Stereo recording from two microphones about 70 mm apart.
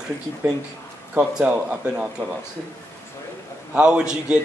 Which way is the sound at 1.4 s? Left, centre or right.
Centre.